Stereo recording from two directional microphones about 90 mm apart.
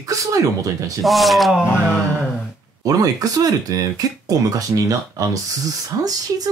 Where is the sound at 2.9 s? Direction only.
40° right (ahead or behind).